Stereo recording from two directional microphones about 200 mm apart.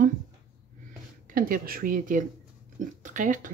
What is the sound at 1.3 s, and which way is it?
Speech, 45° right (ahead or behind).